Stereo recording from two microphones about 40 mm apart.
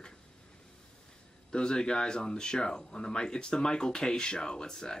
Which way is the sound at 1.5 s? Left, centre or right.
Centre.